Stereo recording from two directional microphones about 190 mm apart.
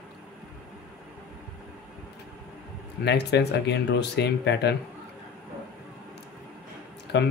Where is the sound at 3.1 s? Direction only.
65° left (ahead or behind).